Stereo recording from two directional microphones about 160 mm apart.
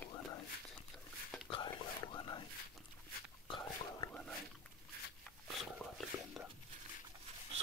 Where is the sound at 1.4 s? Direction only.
30° left (ahead or behind).